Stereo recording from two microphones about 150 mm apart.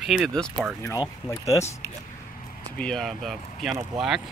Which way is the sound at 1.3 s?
20° left (ahead or behind).